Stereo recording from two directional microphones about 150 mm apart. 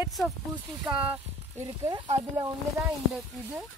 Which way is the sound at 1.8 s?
30° right (ahead or behind).